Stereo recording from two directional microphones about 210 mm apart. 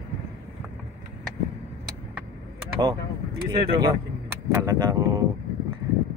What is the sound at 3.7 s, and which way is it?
Speech, 20° right (ahead or behind).